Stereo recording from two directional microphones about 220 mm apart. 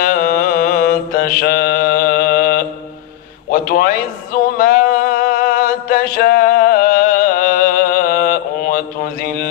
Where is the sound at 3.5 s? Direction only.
40° left (ahead or behind).